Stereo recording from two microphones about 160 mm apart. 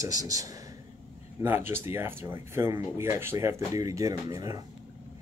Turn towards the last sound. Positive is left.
turn(degrees=-20)  # may be behind; listen again after turning